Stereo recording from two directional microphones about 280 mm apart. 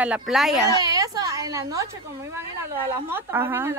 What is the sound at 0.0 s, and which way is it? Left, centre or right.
Speech, centre.